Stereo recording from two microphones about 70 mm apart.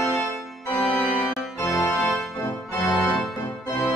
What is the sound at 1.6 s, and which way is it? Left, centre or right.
Organ, left.